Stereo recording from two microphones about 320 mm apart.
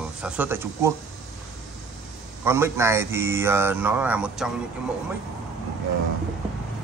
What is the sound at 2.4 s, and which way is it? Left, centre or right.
Speech, centre.